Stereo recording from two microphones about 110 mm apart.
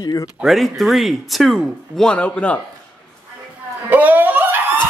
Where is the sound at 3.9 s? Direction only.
15° right (ahead or behind).